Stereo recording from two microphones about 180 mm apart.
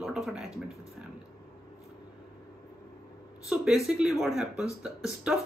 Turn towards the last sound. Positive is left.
turn(degrees=-5)  # may be behind; listen again after turning